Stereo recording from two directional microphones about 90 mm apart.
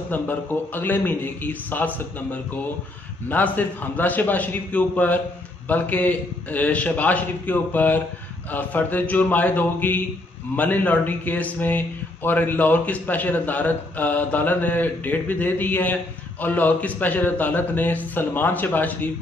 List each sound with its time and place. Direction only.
0.1 s a man's voice: 20° left (ahead or behind)